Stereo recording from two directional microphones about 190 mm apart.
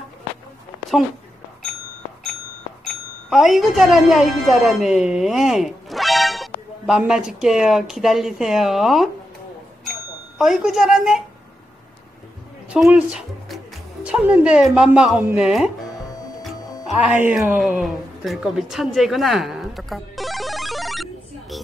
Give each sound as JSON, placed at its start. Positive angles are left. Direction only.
{"t": 3.3, "sound": "a woman's voice", "side_deg": 0}
{"t": 10.3, "sound": "speech", "side_deg": 0}
{"t": 12.6, "sound": "speech", "side_deg": -5}
{"t": 16.1, "sound": "music", "side_deg": 20}
{"t": 16.9, "sound": "a sound", "side_deg": -10}